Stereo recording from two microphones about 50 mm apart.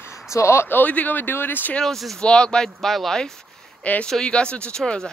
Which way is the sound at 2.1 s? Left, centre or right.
Centre.